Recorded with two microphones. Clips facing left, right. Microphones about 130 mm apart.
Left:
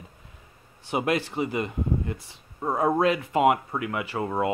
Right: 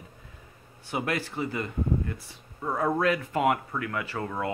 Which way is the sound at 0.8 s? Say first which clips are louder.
Left 5 dB; 20° left (ahead or behind).